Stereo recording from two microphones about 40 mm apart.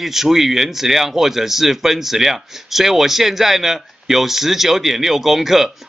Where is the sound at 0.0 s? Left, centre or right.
Centre.